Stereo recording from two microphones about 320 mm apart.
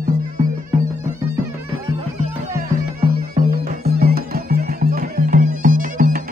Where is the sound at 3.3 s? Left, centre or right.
Right.